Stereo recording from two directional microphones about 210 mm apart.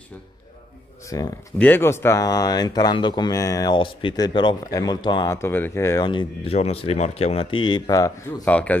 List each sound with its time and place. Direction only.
1.0 s speech: 15° left (ahead or behind)